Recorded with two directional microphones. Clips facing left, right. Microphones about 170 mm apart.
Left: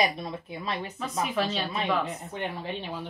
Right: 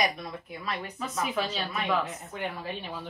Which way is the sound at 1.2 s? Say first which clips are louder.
Left 2 dB; centre (ahead or behind).